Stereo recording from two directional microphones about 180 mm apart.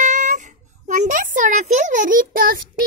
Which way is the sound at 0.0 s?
40° right (ahead or behind).